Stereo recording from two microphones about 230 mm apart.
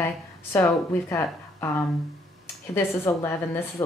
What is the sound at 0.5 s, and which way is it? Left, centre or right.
Speech, centre.